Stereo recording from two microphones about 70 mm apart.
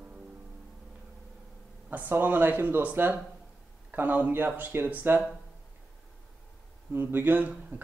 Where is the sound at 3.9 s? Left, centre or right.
Right.